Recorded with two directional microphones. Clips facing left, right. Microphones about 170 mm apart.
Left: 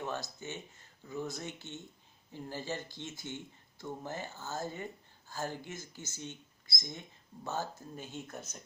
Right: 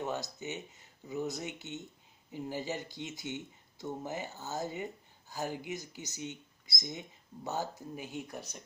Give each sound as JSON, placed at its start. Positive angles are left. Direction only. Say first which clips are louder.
{"t": 0.0, "sound": "speech", "louder": "right 2 dB", "side_deg": -20}